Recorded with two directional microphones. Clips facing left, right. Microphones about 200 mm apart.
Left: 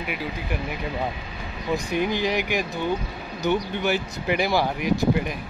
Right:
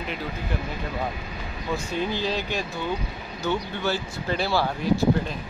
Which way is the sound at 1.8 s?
15° left (ahead or behind).